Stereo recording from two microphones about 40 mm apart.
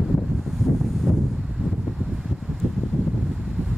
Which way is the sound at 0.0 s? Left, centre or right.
Centre.